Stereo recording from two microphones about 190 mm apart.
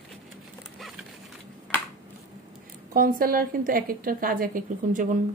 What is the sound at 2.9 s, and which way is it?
A woman's voice, 45° right (ahead or behind).